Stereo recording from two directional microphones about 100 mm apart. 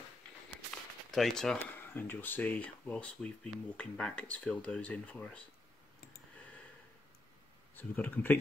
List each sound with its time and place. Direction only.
1.1 s speech: 5° left (ahead or behind)
1.8 s speech: 20° left (ahead or behind)
7.7 s speech: 20° left (ahead or behind)